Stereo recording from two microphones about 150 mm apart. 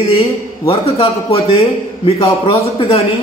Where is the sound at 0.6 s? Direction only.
40° left (ahead or behind).